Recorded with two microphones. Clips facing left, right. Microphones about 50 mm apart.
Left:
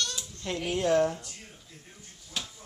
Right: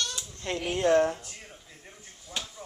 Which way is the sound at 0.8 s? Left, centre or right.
Centre.